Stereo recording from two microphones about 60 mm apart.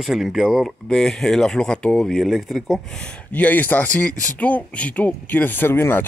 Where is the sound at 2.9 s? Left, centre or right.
Centre.